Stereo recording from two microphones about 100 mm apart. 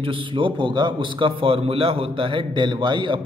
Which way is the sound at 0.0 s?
60° right (ahead or behind).